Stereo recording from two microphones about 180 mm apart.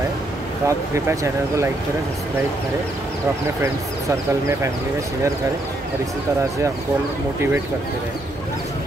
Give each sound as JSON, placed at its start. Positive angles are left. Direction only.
{"t": 0.7, "sound": "speech", "side_deg": -15}